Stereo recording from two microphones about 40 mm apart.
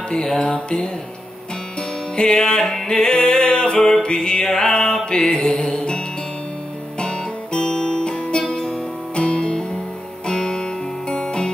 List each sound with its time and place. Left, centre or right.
0.3 s music: centre
2.1 s music: left